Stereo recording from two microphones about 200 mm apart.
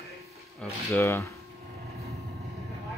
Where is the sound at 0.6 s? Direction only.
5° left (ahead or behind).